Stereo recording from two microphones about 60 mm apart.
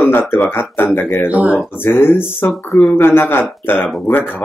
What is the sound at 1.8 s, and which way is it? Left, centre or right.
Speech, left.